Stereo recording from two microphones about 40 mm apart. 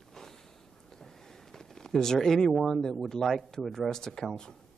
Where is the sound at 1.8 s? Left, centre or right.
Centre.